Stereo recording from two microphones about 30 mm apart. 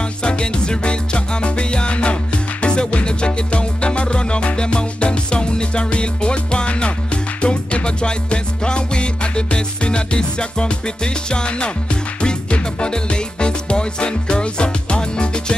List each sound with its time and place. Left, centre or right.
0.2 s music: left